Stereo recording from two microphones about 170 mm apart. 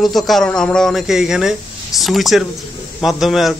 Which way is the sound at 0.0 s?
Centre (ahead or behind).